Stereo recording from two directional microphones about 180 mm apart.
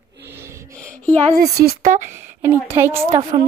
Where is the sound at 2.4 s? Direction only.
10° right (ahead or behind).